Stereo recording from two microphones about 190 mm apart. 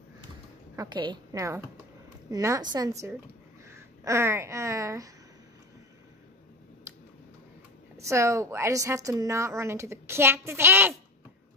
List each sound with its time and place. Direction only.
0.7 s a woman's voice: 25° right (ahead or behind)
8.1 s a woman's voice: 15° right (ahead or behind)